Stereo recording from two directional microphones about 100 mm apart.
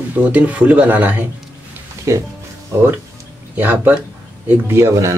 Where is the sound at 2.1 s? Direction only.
30° right (ahead or behind).